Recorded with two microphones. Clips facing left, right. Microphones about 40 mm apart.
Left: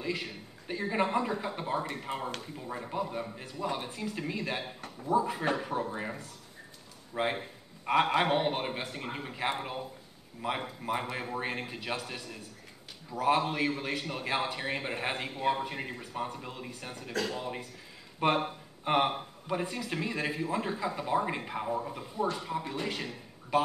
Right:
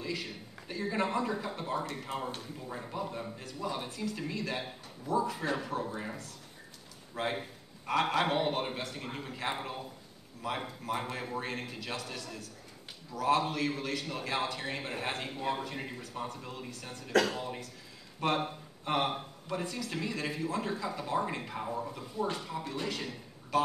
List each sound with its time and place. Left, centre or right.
0.0 s a man's voice: left
10.4 s a man's voice: left